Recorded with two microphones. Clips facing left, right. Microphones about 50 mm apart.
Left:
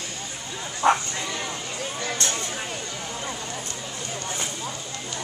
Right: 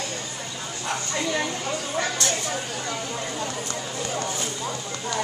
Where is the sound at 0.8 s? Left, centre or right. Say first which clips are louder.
Left 10 dB; left.